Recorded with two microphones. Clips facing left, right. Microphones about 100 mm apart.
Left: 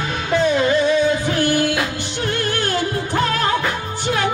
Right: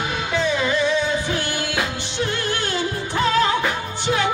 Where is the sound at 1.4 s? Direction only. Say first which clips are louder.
Left 6 dB; 45° left (ahead or behind).